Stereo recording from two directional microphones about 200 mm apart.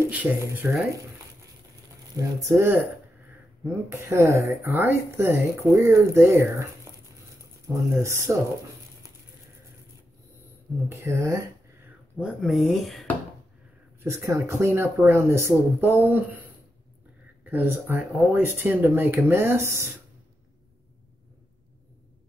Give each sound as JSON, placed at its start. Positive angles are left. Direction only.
{"t": 0.1, "sound": "speech", "side_deg": -10}
{"t": 2.1, "sound": "speech", "side_deg": -15}
{"t": 10.9, "sound": "speech", "side_deg": -15}
{"t": 12.2, "sound": "speech", "side_deg": 0}
{"t": 14.0, "sound": "speech", "side_deg": -15}
{"t": 17.5, "sound": "speech", "side_deg": -10}